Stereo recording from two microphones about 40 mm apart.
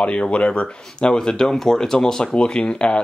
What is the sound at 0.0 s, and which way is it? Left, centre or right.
Speech, left.